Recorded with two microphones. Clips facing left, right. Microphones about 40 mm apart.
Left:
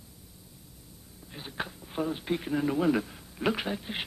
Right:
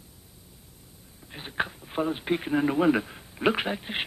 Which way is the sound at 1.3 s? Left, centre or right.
Right.